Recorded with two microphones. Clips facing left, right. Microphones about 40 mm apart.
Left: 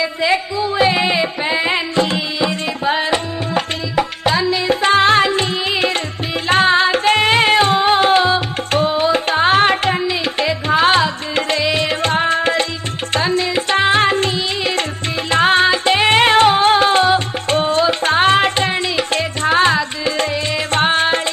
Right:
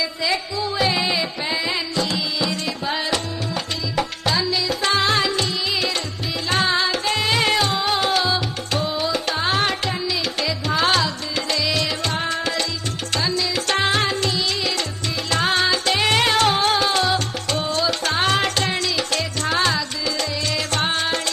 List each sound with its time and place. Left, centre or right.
0.0 s music: left